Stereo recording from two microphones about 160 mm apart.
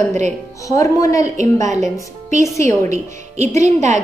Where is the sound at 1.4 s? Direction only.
50° right (ahead or behind).